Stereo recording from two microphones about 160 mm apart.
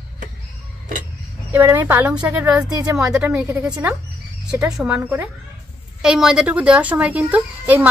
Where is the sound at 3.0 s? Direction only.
5° right (ahead or behind).